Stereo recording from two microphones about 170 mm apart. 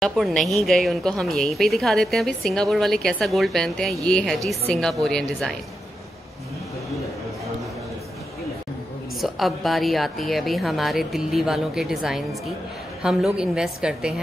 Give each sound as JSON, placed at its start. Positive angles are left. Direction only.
{"t": 0.0, "sound": "speech", "side_deg": 0}
{"t": 9.2, "sound": "speech", "side_deg": 0}